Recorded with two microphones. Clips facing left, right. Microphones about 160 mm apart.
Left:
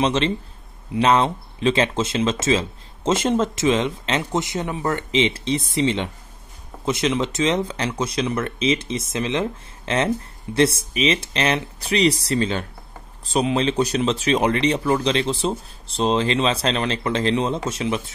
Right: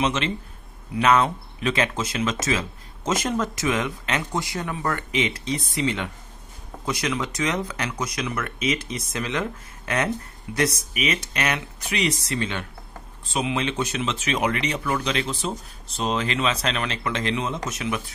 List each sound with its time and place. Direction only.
0.0 s speech: 35° left (ahead or behind)